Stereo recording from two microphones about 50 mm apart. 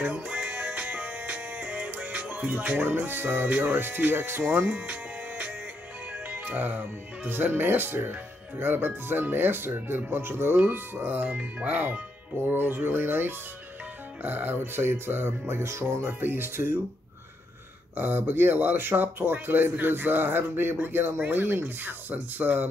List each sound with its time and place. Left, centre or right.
0.0 s music: right
2.8 s speech: right
3.8 s speech: right
4.6 s speech: right
6.3 s speech: right
16.0 s speech: right
17.9 s speech: right